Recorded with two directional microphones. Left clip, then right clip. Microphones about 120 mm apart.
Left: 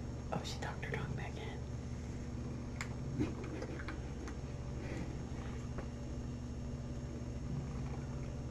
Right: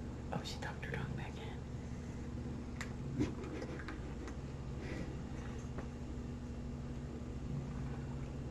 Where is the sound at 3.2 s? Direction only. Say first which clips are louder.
Right 1 dB; 40° right (ahead or behind).